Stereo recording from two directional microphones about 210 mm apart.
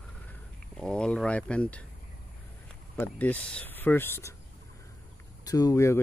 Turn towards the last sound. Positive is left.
turn(degrees=15)  # may be behind; listen again after turning